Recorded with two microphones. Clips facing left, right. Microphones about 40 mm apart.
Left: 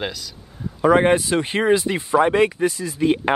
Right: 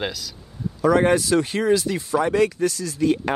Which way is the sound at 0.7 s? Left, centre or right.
Left.